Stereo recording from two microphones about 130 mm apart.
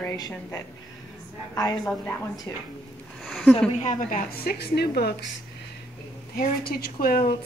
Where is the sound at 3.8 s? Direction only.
70° left (ahead or behind).